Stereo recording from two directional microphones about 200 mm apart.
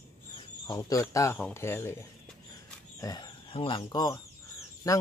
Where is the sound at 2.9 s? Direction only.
20° left (ahead or behind).